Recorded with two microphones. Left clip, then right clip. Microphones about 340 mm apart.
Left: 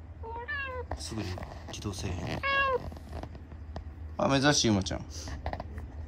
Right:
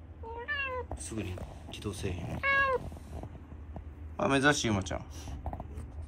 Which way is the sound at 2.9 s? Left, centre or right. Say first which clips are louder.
Left 3 dB; centre.